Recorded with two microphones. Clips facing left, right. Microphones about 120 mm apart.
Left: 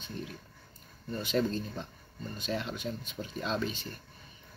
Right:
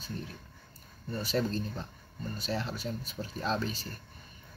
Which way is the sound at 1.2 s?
35° right (ahead or behind).